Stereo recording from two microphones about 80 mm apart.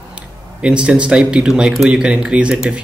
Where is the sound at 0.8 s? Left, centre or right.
Centre.